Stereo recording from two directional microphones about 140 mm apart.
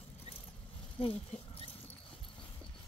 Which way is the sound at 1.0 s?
40° left (ahead or behind).